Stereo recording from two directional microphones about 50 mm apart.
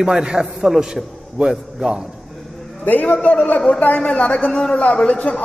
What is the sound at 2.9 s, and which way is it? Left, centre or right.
Speech, left.